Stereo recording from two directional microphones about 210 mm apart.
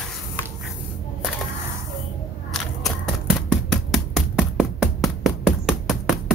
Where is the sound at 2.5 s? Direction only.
Centre (ahead or behind).